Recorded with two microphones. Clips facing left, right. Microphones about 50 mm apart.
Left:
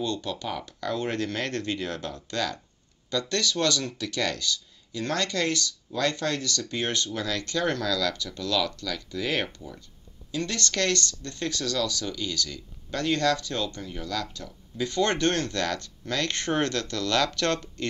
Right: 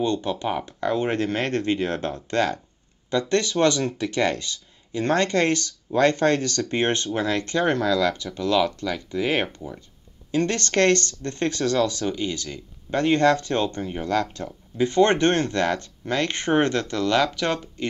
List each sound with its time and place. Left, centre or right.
0.0 s speech: right